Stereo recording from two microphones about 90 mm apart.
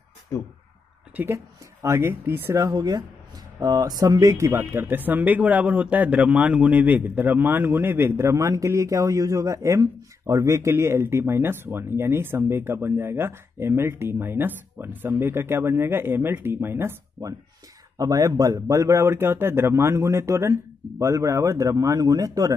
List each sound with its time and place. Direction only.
0.3 s speech: 35° left (ahead or behind)
1.1 s speech: 30° right (ahead or behind)
2.7 s speech: 45° right (ahead or behind); by 16.9 s 25° right (ahead or behind)
17.2 s a man's voice: 45° right (ahead or behind)